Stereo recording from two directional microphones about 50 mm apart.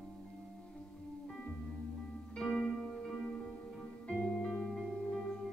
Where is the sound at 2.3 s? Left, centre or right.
Centre.